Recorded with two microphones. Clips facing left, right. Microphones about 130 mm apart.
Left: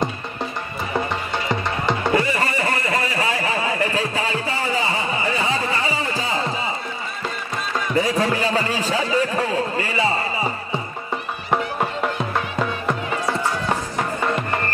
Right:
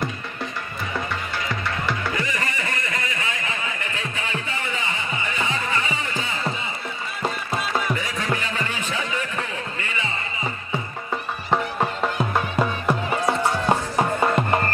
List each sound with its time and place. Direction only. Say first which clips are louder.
0.9 s music: left 5 dB; 25° left (ahead or behind)
7.9 s music: left 6 dB; 35° left (ahead or behind)
11.5 s music: left 1 dB; 5° left (ahead or behind)
12.4 s music: right 1 dB; 10° right (ahead or behind)
13.7 s music: right 3 dB; 25° right (ahead or behind)